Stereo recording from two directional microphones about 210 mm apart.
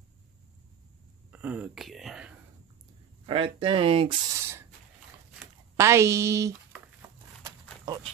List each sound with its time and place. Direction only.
1.3 s speech: 5° right (ahead or behind)
3.3 s speech: 25° right (ahead or behind)
4.4 s goat: 10° right (ahead or behind)
5.8 s a sound: 15° right (ahead or behind)